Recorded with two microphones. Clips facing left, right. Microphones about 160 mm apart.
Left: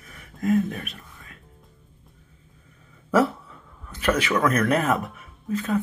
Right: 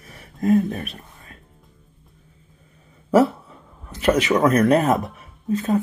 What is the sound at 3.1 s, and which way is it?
Speech, 25° right (ahead or behind).